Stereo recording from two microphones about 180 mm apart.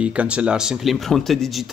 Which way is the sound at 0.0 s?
5° right (ahead or behind).